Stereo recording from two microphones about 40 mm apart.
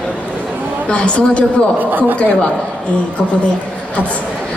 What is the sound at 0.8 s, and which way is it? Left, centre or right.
Speech, left.